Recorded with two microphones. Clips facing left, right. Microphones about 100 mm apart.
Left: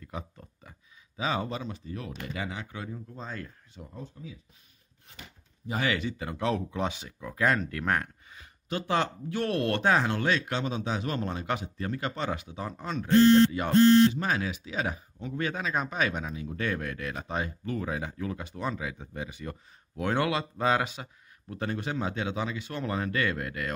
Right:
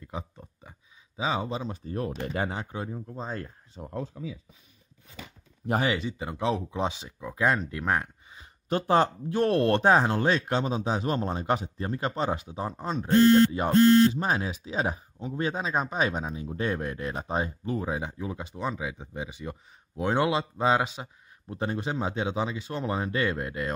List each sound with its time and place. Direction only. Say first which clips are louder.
0.0 s a sound: right 2 dB; 20° right (ahead or behind)
1.7 s speech: right 6 dB; 45° right (ahead or behind)
4.2 s speech: right 7 dB; 90° right
5.8 s speech: right 1 dB; 25° right (ahead or behind)
8.6 s speech: right 5 dB; 40° right (ahead or behind)